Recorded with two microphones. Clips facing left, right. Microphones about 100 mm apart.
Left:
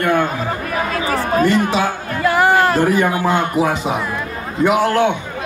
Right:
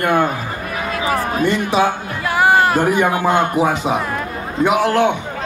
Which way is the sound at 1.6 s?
20° right (ahead or behind).